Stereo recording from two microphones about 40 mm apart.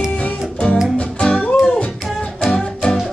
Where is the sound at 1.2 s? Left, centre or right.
Left.